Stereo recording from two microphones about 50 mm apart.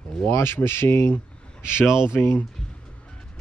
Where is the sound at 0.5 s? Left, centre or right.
Left.